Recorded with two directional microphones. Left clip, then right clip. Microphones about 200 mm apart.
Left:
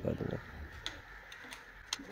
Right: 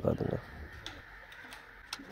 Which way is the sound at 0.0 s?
10° right (ahead or behind).